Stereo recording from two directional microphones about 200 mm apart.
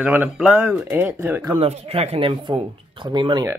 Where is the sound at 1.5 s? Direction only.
30° right (ahead or behind).